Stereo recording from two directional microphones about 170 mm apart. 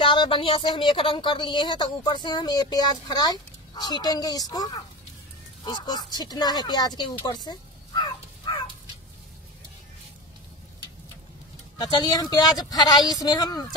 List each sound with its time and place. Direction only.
0.0 s speech: 30° left (ahead or behind)
11.8 s speech: 25° left (ahead or behind)